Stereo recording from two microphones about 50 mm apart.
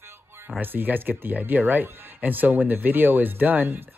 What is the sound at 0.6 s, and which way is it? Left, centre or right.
Speech, right.